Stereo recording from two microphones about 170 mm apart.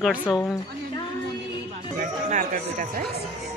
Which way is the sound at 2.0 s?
50° right (ahead or behind).